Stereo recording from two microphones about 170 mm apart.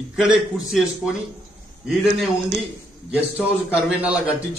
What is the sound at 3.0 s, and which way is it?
A man's voice, 5° right (ahead or behind).